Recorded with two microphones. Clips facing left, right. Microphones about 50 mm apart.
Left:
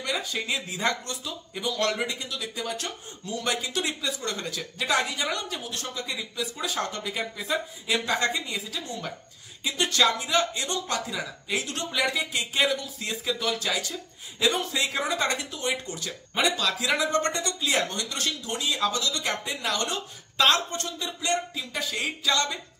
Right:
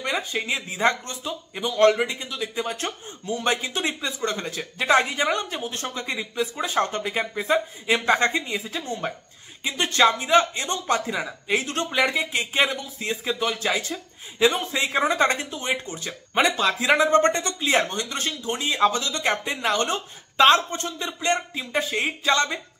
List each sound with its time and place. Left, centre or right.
0.0 s speech: right